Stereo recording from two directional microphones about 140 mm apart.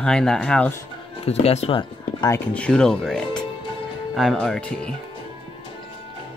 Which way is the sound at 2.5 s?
5° left (ahead or behind).